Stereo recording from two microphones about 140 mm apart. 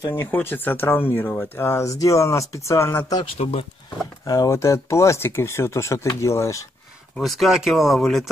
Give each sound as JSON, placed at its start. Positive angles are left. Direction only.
{"t": 0.1, "sound": "speech", "side_deg": 15}
{"t": 3.3, "sound": "speech", "side_deg": 45}
{"t": 4.3, "sound": "speech", "side_deg": 25}
{"t": 7.2, "sound": "speech", "side_deg": 0}